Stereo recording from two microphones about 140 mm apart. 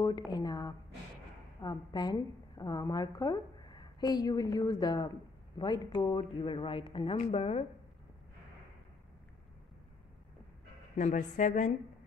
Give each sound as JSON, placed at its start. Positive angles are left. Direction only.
{"t": 0.0, "sound": "a woman's voice", "side_deg": 30}
{"t": 7.2, "sound": "speech", "side_deg": 50}
{"t": 11.0, "sound": "a woman's voice", "side_deg": 60}